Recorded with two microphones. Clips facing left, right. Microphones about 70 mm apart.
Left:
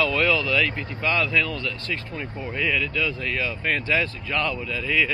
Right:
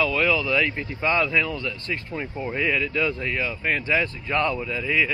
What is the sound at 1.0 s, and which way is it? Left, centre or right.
Speech, right.